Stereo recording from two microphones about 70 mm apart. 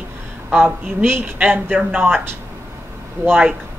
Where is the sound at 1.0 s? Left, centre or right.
Right.